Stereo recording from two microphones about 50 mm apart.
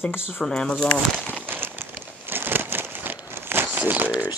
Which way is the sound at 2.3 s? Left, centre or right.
Right.